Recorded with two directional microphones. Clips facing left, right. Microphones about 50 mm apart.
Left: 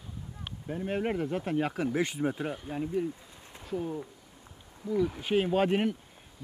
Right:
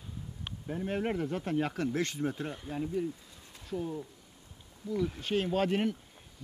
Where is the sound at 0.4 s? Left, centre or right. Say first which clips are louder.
Left 1 dB; centre.